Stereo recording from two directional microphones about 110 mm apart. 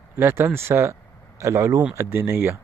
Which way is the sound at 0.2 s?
20° right (ahead or behind).